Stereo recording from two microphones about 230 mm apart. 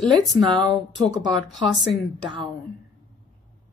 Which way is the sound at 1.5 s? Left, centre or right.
Left.